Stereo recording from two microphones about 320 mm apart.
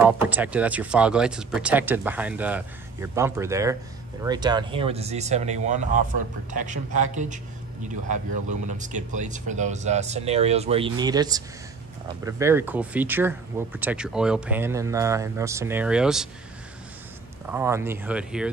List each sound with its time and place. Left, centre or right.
0.0 s speech: centre
17.5 s speech: centre